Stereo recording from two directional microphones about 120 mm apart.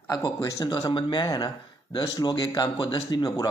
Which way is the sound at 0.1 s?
35° left (ahead or behind).